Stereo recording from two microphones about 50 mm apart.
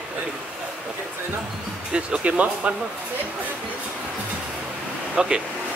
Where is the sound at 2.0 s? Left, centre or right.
Right.